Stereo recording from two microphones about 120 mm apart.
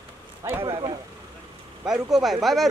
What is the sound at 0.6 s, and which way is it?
Speech, 45° right (ahead or behind).